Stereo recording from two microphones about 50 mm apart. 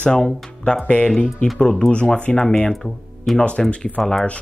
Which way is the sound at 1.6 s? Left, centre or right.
Centre.